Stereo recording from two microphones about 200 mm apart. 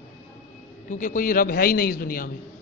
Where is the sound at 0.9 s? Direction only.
40° left (ahead or behind).